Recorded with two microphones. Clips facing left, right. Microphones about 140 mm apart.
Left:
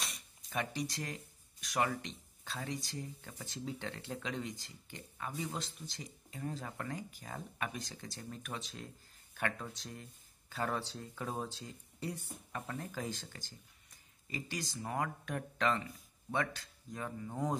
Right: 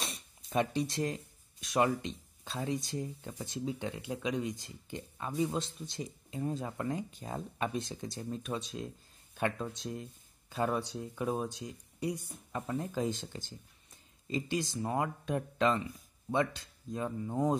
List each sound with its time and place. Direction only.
0.0 s speech: 25° right (ahead or behind)